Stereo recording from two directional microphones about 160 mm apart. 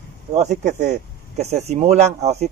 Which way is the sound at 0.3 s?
45° right (ahead or behind).